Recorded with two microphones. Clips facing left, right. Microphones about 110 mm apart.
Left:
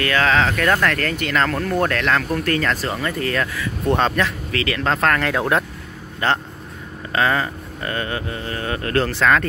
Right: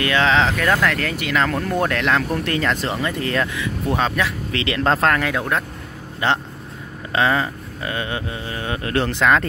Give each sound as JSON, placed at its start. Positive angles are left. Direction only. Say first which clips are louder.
{"t": 0.0, "sound": "speech", "louder": "even", "side_deg": -20}
{"t": 0.6, "sound": "speech", "louder": "even", "side_deg": -10}
{"t": 3.8, "sound": "speech", "louder": "left 3 dB", "side_deg": -5}
{"t": 4.5, "sound": "speech", "louder": "right 2 dB", "side_deg": -25}
{"t": 6.2, "sound": "speech", "louder": "even", "side_deg": -15}